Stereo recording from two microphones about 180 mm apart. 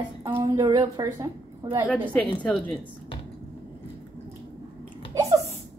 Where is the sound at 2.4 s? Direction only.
5° left (ahead or behind).